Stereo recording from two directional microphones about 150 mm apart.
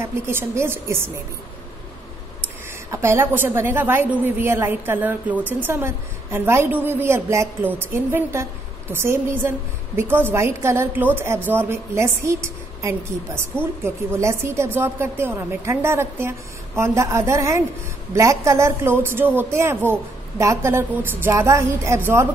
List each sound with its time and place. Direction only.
0.0 s a woman's voice: 15° right (ahead or behind)
2.9 s a woman's voice: 15° right (ahead or behind)